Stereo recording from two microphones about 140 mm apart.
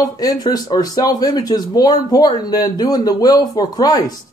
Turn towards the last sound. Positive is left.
turn(degrees=25)  # may be behind; listen again after turning